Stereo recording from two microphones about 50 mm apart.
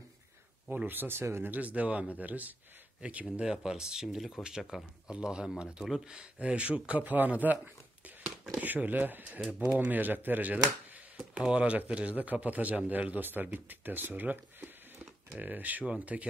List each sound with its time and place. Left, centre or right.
0.7 s speech: right
1.4 s speech: right
3.3 s speech: centre; by 7.5 s right
8.5 s speech: right
9.5 s speech: right
9.8 s speech: right
11.1 s speech: centre
16.1 s speech: right